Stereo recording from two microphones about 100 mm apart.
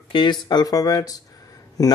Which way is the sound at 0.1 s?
50° left (ahead or behind).